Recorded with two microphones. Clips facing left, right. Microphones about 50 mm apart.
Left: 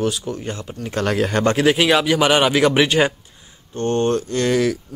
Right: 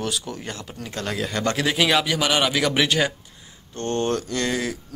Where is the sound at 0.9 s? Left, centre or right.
Left.